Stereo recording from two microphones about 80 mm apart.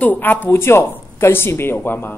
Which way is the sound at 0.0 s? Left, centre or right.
Left.